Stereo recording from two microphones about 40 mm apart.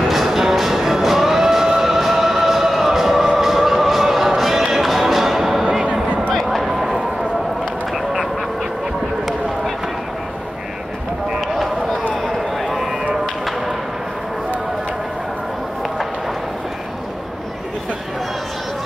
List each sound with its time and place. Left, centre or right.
0.1 s music: centre
6.3 s a sound: centre
7.9 s duck: centre
11.4 s run: centre